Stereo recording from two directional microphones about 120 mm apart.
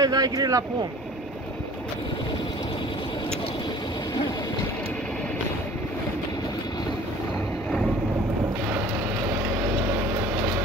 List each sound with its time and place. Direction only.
0.0 s speech: 30° right (ahead or behind)